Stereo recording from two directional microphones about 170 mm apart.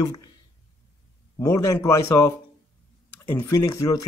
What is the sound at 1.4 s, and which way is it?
Speech, 15° left (ahead or behind).